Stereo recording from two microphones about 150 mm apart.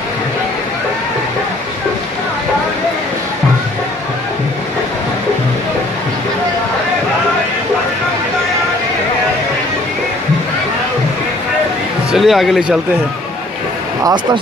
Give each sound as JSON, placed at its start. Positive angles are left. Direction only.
{"t": 12.1, "sound": "speech", "side_deg": 0}
{"t": 14.0, "sound": "speech", "side_deg": -30}